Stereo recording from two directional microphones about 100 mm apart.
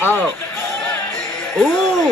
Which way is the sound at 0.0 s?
20° left (ahead or behind).